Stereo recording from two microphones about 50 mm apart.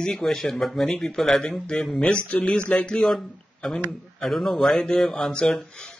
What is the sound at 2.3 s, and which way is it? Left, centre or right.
A man's voice, left.